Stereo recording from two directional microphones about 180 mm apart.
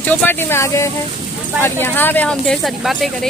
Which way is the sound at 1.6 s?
10° left (ahead or behind).